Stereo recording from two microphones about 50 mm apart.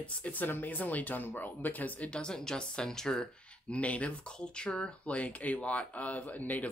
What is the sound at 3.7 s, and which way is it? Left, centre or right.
Speech, left.